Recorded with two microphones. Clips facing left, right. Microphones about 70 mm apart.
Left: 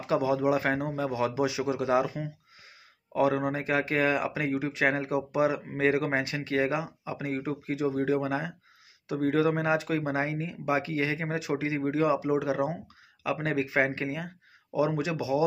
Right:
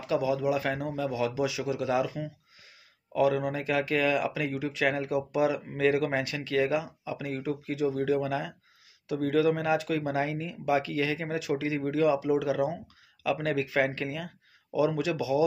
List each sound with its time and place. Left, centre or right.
0.0 s speech: left